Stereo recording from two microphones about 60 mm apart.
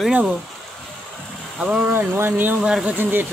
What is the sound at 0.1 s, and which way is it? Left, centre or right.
Speech, right.